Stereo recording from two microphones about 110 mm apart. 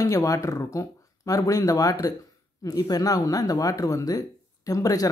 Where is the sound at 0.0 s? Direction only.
30° left (ahead or behind).